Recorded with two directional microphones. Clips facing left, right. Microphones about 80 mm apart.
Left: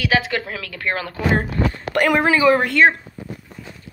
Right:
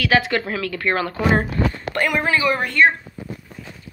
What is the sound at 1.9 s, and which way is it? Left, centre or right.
A woman's voice, left.